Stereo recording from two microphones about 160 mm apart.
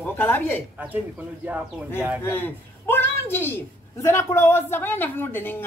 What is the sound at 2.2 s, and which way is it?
A woman's voice, 15° left (ahead or behind).